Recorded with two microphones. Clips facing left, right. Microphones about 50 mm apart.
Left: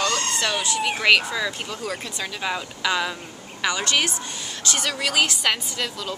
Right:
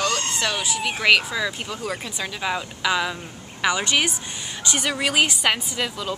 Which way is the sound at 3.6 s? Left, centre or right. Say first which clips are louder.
Right 2 dB; centre.